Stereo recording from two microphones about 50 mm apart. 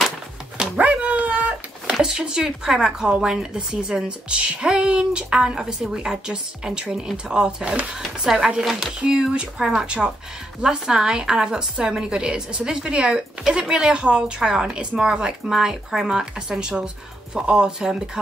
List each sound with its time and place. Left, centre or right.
0.6 s dog: centre
1.0 s dog: right
1.9 s speech: centre
9.0 s speech: centre